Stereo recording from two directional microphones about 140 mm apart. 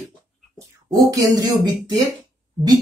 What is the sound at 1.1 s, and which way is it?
Speech, 25° right (ahead or behind).